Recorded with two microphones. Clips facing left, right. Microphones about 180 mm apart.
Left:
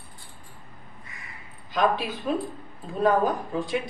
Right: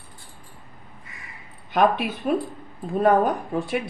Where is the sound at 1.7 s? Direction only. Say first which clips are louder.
Right 4 dB; 60° right (ahead or behind).